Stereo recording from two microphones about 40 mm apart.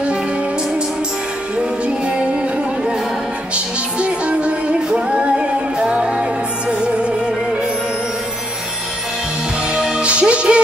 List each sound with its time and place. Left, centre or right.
3.5 s music: right
9.8 s music: centre
10.0 s music: right